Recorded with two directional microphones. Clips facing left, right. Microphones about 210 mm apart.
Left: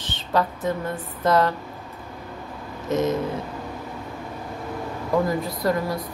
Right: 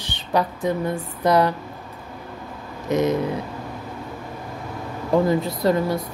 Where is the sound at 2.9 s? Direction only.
15° right (ahead or behind).